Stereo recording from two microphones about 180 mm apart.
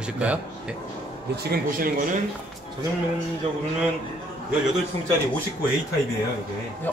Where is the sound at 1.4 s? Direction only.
50° right (ahead or behind).